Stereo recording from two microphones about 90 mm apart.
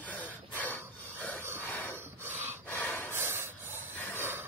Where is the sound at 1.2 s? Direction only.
20° left (ahead or behind).